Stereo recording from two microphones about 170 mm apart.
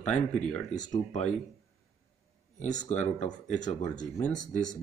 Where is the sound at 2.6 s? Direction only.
45° left (ahead or behind).